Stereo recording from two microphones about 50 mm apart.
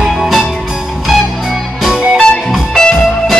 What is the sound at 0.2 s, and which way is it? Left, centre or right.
Music, centre.